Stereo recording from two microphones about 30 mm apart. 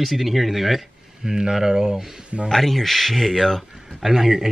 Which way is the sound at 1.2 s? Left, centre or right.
Centre.